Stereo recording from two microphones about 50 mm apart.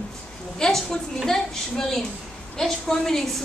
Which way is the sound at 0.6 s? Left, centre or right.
Centre.